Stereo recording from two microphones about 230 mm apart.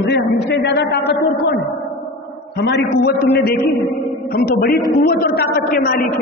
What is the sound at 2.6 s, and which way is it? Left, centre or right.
Speech, left.